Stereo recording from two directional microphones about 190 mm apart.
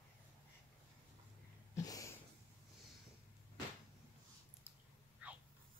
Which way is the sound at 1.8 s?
20° left (ahead or behind).